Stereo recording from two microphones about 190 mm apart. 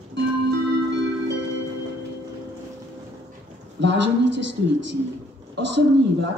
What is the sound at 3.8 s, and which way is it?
Speech, 70° right (ahead or behind).